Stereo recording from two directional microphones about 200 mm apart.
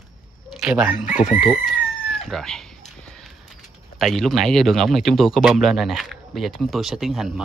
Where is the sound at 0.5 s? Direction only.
5° right (ahead or behind).